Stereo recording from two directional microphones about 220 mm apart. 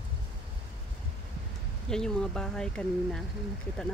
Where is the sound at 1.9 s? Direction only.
5° left (ahead or behind).